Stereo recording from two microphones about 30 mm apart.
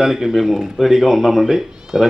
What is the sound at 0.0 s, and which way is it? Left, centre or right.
Speech, centre.